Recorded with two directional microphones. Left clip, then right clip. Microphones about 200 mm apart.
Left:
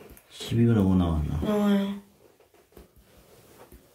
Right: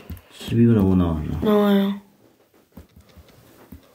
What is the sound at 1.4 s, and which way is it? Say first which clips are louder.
Speech: right 8 dB; 30° right (ahead or behind).